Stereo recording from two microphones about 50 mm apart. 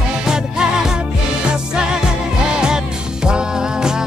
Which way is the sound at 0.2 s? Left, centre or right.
Centre.